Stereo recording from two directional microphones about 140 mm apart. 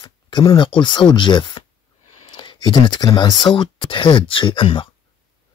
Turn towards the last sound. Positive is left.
turn(degrees=40)  # may be behind; listen again after turning